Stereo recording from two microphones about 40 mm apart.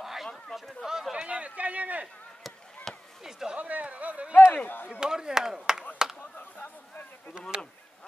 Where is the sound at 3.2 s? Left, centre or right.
Centre.